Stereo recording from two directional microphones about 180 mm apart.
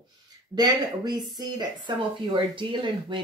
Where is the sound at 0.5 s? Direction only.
25° right (ahead or behind).